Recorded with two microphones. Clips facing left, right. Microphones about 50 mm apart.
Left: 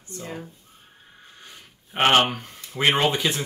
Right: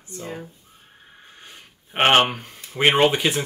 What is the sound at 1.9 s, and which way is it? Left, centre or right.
Speech, right.